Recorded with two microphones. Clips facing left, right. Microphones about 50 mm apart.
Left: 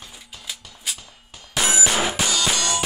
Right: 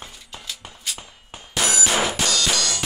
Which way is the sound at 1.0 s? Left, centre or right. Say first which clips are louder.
Right 4 dB; right.